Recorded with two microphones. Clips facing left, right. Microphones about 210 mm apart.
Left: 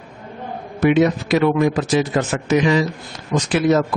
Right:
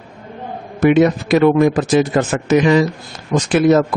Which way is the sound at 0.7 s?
50° right (ahead or behind).